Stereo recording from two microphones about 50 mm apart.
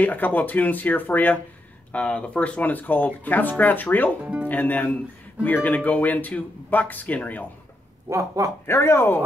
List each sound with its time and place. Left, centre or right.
0.0 s speech: left
1.9 s speech: left
4.2 s speech: right
4.5 s speech: left
8.1 s speech: right
8.6 s speech: left